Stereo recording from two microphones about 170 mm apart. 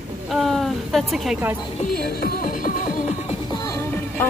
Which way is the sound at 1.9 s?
65° left (ahead or behind).